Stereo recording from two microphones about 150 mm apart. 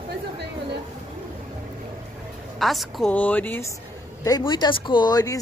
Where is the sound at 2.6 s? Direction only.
Centre (ahead or behind).